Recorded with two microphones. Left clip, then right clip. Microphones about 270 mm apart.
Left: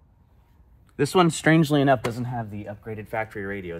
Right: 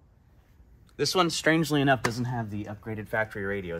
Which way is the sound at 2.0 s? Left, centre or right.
Centre.